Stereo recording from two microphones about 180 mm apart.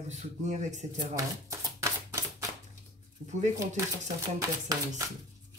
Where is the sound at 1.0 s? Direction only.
20° right (ahead or behind).